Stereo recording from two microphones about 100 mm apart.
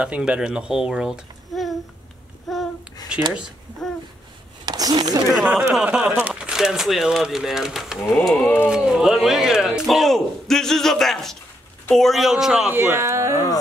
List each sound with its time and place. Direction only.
0.0 s a child's voice: 10° right (ahead or behind)
2.5 s babbling: centre (ahead or behind)
3.1 s speech: 10° right (ahead or behind)
4.6 s a sound: 45° right (ahead or behind)
5.8 s speech: 5° right (ahead or behind)
12.7 s speech: 25° right (ahead or behind)